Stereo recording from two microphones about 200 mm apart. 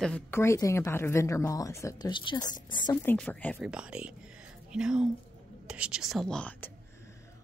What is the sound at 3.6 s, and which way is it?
A woman's voice, 5° right (ahead or behind).